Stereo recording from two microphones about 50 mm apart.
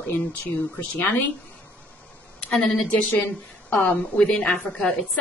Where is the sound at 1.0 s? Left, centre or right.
Left.